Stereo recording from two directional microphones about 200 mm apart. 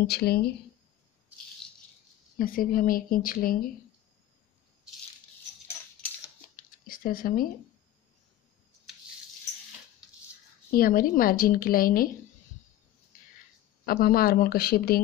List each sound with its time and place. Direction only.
0.0 s speech: 50° left (ahead or behind)
2.3 s speech: 45° left (ahead or behind)
6.5 s a sound: 45° left (ahead or behind)
10.7 s speech: 45° left (ahead or behind)
13.8 s speech: 45° left (ahead or behind)